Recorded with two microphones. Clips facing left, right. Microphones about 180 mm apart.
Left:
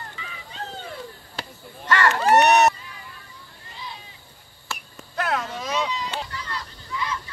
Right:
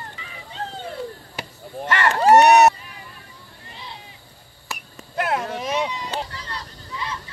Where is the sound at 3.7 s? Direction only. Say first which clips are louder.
Left 1 dB; 20° right (ahead or behind).